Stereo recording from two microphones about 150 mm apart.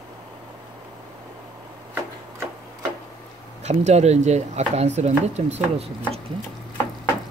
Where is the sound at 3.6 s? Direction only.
50° right (ahead or behind).